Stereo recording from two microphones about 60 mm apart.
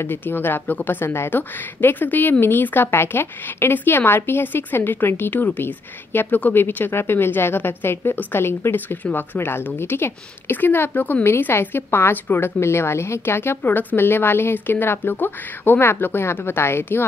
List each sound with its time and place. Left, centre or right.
0.0 s a woman's voice: left